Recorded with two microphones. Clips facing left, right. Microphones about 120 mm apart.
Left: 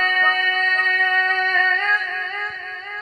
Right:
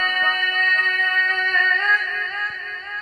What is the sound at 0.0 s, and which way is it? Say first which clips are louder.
Music: left 3 dB; 60° left (ahead or behind).